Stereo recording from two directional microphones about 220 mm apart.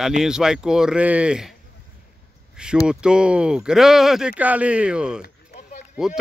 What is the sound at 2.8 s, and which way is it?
Speech, 5° right (ahead or behind).